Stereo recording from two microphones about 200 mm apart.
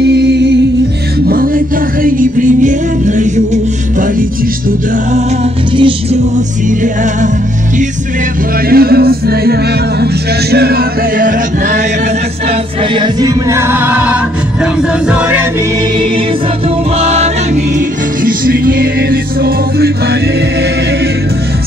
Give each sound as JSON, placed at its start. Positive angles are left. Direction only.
{"t": 0.0, "sound": "music", "side_deg": -55}
{"t": 1.2, "sound": "music", "side_deg": -45}
{"t": 5.1, "sound": "music", "side_deg": -30}
{"t": 8.6, "sound": "music", "side_deg": -50}
{"t": 10.5, "sound": "chant", "side_deg": -50}
{"t": 12.4, "sound": "music", "side_deg": -25}
{"t": 17.0, "sound": "music", "side_deg": -30}
{"t": 17.7, "sound": "music", "side_deg": -45}